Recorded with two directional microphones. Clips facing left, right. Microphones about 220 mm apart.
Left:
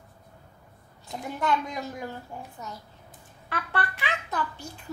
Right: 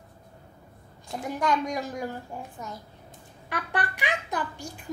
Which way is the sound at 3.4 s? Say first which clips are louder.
Right 1 dB; 15° right (ahead or behind).